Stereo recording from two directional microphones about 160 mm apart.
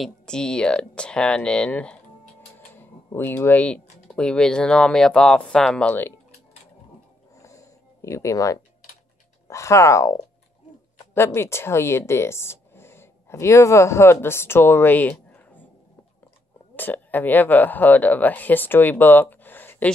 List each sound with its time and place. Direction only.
0.0 s speech: 5° left (ahead or behind)
7.3 s a sound: 20° left (ahead or behind)
9.5 s speech: 20° left (ahead or behind)
16.7 s speech: 10° left (ahead or behind)